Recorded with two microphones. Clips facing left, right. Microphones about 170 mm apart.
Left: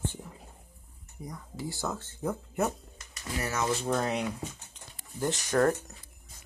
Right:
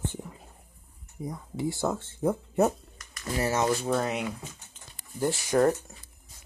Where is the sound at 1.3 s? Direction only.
25° right (ahead or behind).